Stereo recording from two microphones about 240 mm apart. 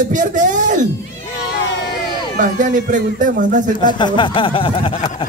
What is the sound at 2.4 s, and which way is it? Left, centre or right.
A man's voice, right.